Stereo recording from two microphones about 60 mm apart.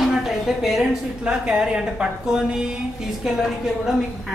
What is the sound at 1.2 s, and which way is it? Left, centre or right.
A woman's voice, centre.